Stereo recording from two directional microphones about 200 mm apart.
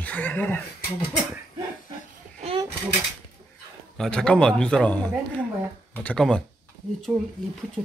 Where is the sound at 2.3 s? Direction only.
30° right (ahead or behind).